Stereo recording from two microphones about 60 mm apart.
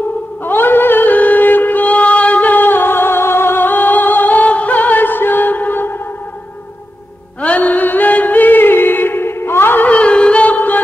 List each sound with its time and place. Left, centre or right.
0.5 s a sound: left
7.4 s singing: left
9.8 s music: centre